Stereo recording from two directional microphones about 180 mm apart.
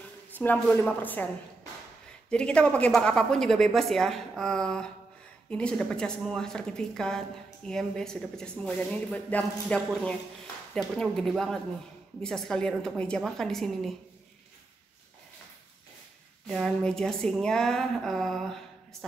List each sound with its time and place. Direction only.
0.4 s speech: 10° left (ahead or behind)
2.3 s a woman's voice: 5° left (ahead or behind)
16.4 s a woman's voice: centre (ahead or behind)